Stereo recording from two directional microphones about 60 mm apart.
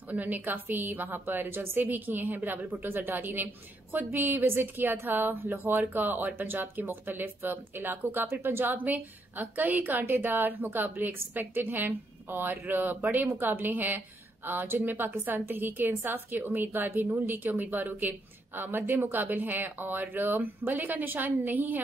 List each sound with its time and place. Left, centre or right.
0.1 s speech: right